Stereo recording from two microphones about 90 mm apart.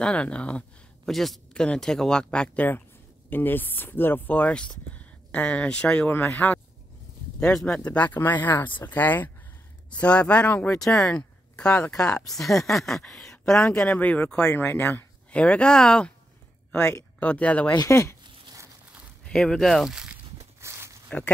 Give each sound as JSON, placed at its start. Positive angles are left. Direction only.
{"t": 0.0, "sound": "speech", "side_deg": 10}
{"t": 1.1, "sound": "speech", "side_deg": 0}
{"t": 7.3, "sound": "speech", "side_deg": 5}
{"t": 7.9, "sound": "speech", "side_deg": 20}
{"t": 17.2, "sound": "speech", "side_deg": 15}
{"t": 17.8, "sound": "speech", "side_deg": 35}
{"t": 19.2, "sound": "speech", "side_deg": 5}
{"t": 20.6, "sound": "walk", "side_deg": -30}